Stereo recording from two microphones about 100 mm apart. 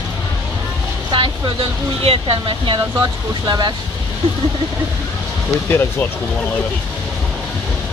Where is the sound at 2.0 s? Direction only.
70° right (ahead or behind); by 3.7 s 45° right (ahead or behind).